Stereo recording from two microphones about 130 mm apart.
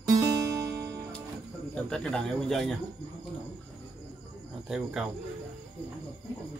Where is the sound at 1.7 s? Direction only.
5° left (ahead or behind).